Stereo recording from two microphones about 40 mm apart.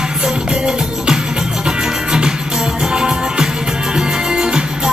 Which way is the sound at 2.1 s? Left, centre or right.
Centre.